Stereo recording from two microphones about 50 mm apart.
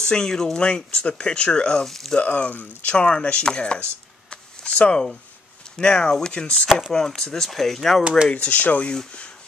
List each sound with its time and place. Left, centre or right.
0.0 s speech: centre
0.6 s speech: centre
2.1 s chopping: left
4.3 s a sound: left
5.8 s speech: centre
8.3 s chopping: left